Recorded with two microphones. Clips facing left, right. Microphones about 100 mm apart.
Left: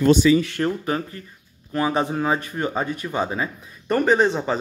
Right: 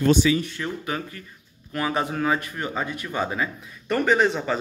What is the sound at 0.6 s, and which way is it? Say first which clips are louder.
A man's voice: left 6 dB; 40° left (ahead or behind).